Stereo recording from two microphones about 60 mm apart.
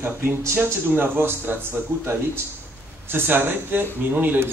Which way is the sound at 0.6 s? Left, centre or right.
Right.